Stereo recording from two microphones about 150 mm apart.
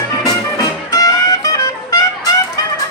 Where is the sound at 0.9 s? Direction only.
25° left (ahead or behind).